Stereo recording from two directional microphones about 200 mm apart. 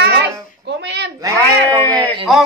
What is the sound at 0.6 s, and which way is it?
Speech, 60° right (ahead or behind).